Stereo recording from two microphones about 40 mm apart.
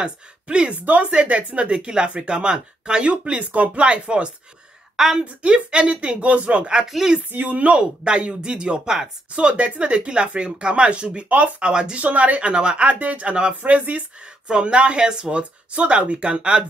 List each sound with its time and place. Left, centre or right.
0.0 s a woman's voice: right
4.9 s a woman's voice: centre
5.5 s speech: right
6.9 s speech: centre
7.2 s a woman's voice: right
7.7 s speech: right
9.3 s speech: right
11.2 s speech: right
11.6 s speech: right
12.0 s speech: right
12.8 s speech: right
13.6 s speech: right
14.2 s speech: right